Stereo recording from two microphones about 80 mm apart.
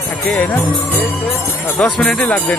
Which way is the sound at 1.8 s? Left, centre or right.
Centre.